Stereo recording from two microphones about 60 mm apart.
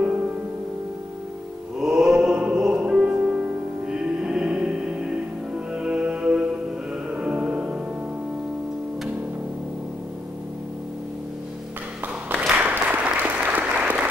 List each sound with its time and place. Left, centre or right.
1.8 s music: centre
12.5 s applause: right